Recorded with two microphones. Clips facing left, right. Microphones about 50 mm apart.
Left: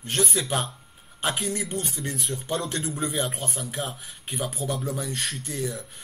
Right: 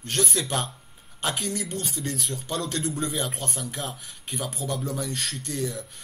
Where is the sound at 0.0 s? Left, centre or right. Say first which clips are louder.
Left 1 dB; centre.